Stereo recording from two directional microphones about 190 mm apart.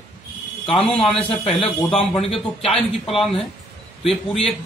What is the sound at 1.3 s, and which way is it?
Speech, 30° left (ahead or behind).